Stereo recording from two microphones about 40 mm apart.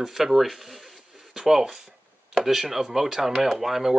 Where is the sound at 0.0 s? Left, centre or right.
Centre.